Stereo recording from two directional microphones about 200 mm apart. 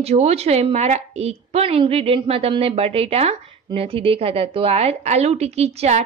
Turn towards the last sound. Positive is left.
turn(degrees=-30)  # may be behind; listen again after turning